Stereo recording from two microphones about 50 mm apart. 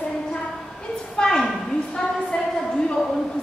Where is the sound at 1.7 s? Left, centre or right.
Centre.